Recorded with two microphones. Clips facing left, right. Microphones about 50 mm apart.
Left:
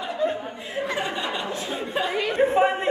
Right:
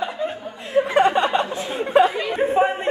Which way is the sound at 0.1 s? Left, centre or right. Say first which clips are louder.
Left 2 dB; centre.